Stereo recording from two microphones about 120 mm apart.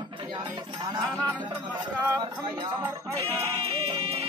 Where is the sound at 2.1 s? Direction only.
30° right (ahead or behind).